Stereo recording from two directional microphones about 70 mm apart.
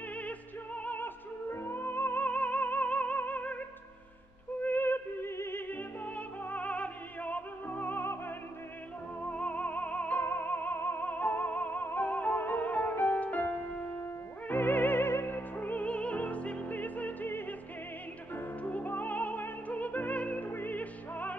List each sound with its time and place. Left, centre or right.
0.1 s music: centre
4.6 s music: left
9.2 s music: centre